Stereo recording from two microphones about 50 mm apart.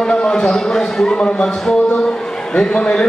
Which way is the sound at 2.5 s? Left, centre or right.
Left.